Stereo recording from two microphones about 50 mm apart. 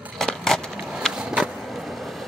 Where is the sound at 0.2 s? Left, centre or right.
Centre.